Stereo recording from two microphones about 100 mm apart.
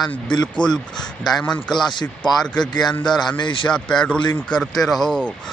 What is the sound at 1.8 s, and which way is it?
Speech, 50° left (ahead or behind).